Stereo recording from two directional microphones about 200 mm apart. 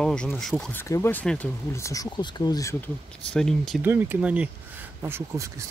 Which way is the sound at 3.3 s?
Centre (ahead or behind).